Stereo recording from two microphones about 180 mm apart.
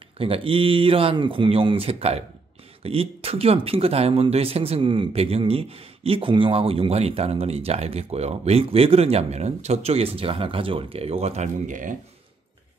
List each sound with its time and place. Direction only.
0.2 s speech: 30° right (ahead or behind); by 12.0 s 45° right (ahead or behind)